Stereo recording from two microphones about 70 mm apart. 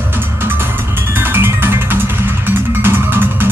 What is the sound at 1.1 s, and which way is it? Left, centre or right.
Music, right.